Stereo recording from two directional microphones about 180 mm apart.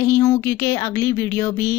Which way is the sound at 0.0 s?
15° left (ahead or behind).